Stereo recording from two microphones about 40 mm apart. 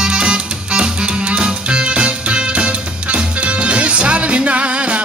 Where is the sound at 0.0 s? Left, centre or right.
Right.